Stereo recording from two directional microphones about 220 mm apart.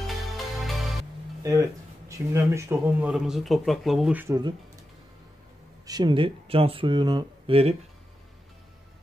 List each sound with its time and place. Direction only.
0.0 s music: centre (ahead or behind)
1.4 s speech: 15° right (ahead or behind)
5.9 s speech: 20° right (ahead or behind)